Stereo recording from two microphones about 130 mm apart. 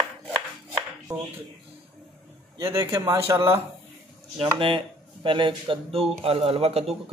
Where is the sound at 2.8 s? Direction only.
25° right (ahead or behind).